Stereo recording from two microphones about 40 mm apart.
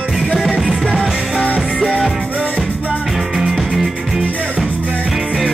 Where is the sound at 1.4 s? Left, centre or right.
Left.